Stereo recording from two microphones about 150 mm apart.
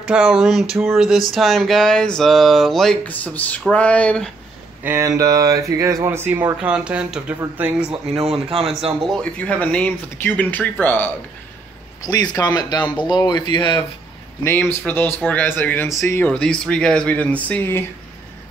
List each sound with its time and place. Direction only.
0.0 s speech: 5° right (ahead or behind)
4.8 s speech: 20° right (ahead or behind)
8.1 s speech: 40° right (ahead or behind)
9.0 s speech: 10° left (ahead or behind)
12.1 s speech: 25° left (ahead or behind)
14.4 s speech: 15° left (ahead or behind)